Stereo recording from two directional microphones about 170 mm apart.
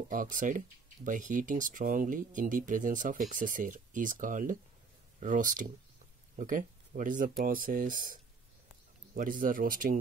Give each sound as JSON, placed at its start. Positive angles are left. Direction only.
{"t": 0.1, "sound": "speech", "side_deg": -50}